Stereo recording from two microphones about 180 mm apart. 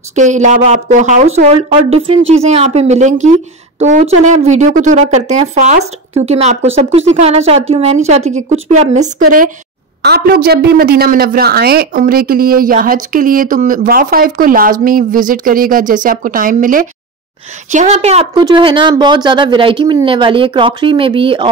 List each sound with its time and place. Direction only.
0.1 s speech: 45° right (ahead or behind)
10.0 s speech: 60° right (ahead or behind); by 21.5 s 30° right (ahead or behind)